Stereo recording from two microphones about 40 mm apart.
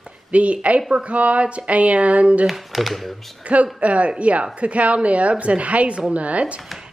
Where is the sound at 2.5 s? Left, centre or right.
Centre.